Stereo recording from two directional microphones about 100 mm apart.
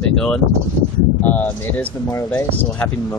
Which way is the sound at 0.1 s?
5° left (ahead or behind).